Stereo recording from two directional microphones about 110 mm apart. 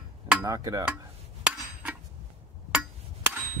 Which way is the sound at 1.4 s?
15° right (ahead or behind).